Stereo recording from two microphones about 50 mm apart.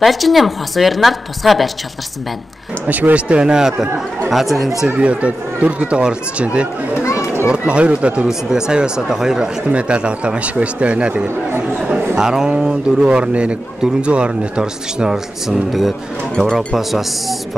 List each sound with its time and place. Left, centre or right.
0.0 s a woman's voice: centre
2.9 s speech: right; by 3.7 s centre
4.3 s a woman's voice: centre
4.8 s speech: right
9.7 s a woman's voice: right; by 17.4 s centre